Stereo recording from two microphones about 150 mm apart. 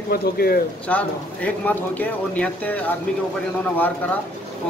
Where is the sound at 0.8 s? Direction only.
10° left (ahead or behind).